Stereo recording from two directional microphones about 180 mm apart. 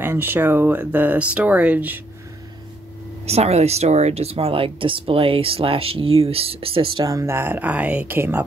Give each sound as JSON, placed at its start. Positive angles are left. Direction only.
{"t": 0.0, "sound": "speech", "side_deg": -10}
{"t": 3.3, "sound": "speech", "side_deg": -35}